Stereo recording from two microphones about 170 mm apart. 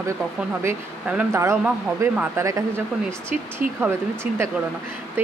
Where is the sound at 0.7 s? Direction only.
10° right (ahead or behind).